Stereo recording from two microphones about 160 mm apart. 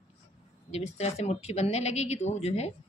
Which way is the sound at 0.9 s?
40° left (ahead or behind).